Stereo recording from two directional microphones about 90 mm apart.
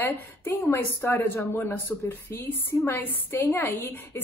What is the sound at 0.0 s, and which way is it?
A woman's voice, 25° left (ahead or behind).